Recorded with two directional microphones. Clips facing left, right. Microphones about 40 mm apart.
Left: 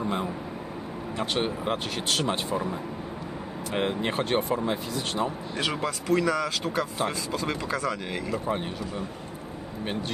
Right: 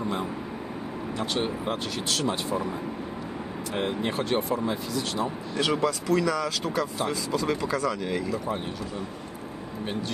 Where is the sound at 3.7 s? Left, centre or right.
Left.